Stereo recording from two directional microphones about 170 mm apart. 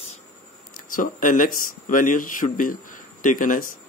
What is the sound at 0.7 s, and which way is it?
Speech, 55° left (ahead or behind).